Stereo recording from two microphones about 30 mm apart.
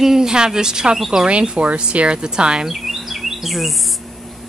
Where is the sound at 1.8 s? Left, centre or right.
Right.